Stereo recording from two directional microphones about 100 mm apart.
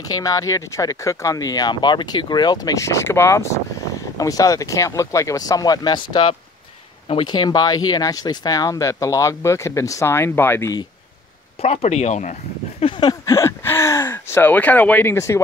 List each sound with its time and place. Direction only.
0.1 s speech: 35° left (ahead or behind)
7.2 s speech: 45° left (ahead or behind); by 10.7 s 25° left (ahead or behind)
11.6 s speech: 90° left
12.8 s a sound: 50° left (ahead or behind)
13.2 s speech: 30° left (ahead or behind)